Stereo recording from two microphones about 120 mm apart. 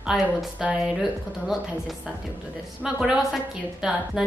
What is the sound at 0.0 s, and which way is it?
Speech, 5° right (ahead or behind).